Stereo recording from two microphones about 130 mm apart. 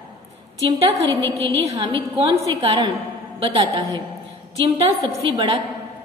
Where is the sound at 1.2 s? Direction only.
20° left (ahead or behind).